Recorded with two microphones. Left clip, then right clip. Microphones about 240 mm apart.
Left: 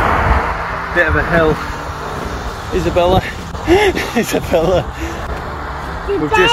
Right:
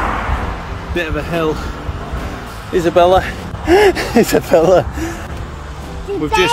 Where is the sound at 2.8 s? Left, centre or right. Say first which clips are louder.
Right 3 dB; centre.